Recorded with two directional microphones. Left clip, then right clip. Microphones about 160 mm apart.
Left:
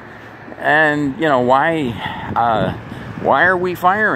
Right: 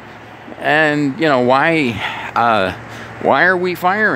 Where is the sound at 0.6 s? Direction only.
40° right (ahead or behind).